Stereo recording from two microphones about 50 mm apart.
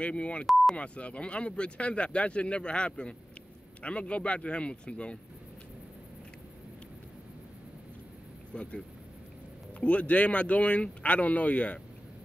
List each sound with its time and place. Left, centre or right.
0.0 s speech: left
8.5 s speech: left
9.8 s speech: left